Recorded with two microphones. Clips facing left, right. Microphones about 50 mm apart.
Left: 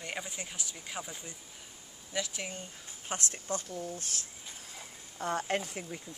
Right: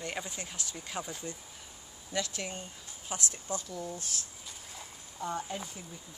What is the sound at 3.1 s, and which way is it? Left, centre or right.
Speech, left.